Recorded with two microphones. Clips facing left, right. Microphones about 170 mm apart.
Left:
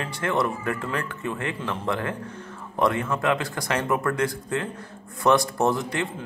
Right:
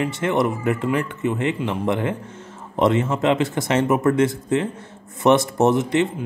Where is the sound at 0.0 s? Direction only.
20° right (ahead or behind).